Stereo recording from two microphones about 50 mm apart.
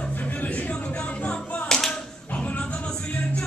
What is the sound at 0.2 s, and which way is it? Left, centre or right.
Music, left.